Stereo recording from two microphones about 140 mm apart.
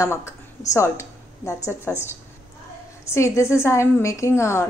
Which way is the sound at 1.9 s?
10° left (ahead or behind).